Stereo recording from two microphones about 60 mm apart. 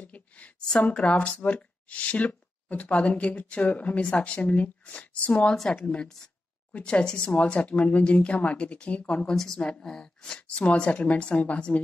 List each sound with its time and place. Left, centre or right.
0.0 s a sound: left
0.7 s speech: centre
5.6 s a woman's voice: centre; by 11.8 s left